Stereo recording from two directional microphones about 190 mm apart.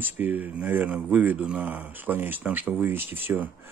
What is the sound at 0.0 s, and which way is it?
Speech, 10° right (ahead or behind).